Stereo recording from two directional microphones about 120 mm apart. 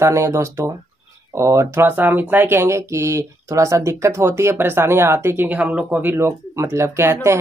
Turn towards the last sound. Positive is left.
turn(degrees=-25)  # may be behind; listen again after turning